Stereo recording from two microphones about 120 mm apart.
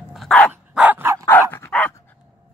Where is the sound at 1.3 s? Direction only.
20° left (ahead or behind).